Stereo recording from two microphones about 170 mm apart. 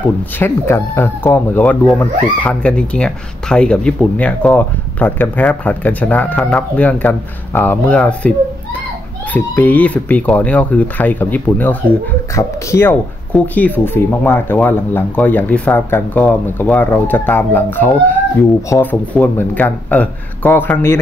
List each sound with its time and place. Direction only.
0.4 s speech: 15° left (ahead or behind)
9.3 s speech: 10° left (ahead or behind)